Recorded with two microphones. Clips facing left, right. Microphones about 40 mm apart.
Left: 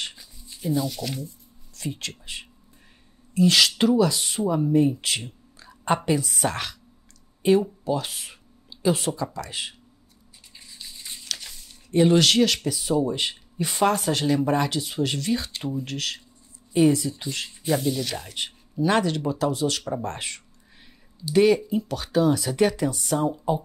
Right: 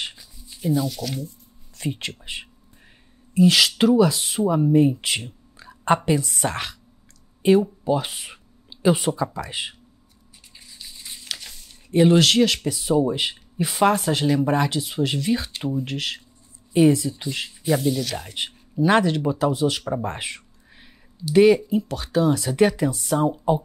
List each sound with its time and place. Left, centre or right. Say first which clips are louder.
0.0 s shuffling cards: right 2 dB; centre
1.8 s speech: right 4 dB; right
3.3 s speech: right 2 dB; centre
5.6 s a sound: right 4 dB; centre
5.9 s speech: right 2 dB; centre
7.8 s speech: right 4 dB; centre
10.8 s a sound: even; centre
12.6 s speech: right 3 dB; centre
16.7 s speech: right 2 dB; centre
23.2 s speech: right 5 dB; centre